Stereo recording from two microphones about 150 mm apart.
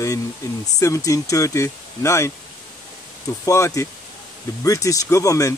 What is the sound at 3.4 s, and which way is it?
Speech, 20° left (ahead or behind).